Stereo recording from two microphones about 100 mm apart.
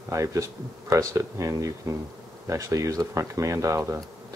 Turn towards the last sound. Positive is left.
turn(degrees=-30)  # may be behind; listen again after turning